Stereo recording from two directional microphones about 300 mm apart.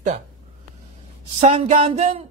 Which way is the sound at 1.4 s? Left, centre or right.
Right.